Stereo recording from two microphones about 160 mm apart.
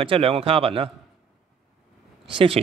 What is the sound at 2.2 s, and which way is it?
Speech, 35° right (ahead or behind).